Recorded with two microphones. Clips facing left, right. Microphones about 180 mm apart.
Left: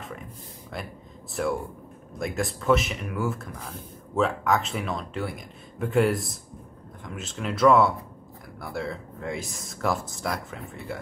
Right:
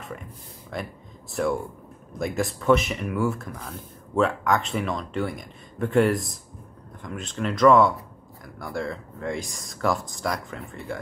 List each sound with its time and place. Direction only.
0.7 s speech: centre (ahead or behind)